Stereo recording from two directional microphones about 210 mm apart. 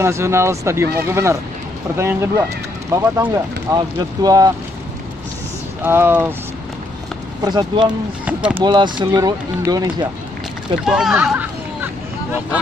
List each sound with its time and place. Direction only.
0.0 s speech: 15° right (ahead or behind)
5.8 s speech: 10° right (ahead or behind)
7.4 s speech: 20° right (ahead or behind)
8.3 s speech: 5° right (ahead or behind)
8.5 s speech: 20° right (ahead or behind)
10.9 s speech: centre (ahead or behind)